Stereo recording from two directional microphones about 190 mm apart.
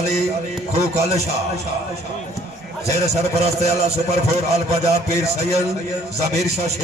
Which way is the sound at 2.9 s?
35° right (ahead or behind).